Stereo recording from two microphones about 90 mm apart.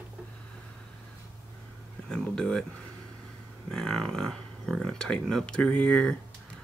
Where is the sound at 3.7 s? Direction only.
5° left (ahead or behind).